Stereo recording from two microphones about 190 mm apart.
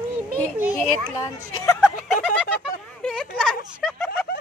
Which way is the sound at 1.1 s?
15° left (ahead or behind).